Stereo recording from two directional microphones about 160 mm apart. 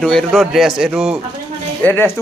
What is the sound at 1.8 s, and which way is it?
Speech, 10° left (ahead or behind).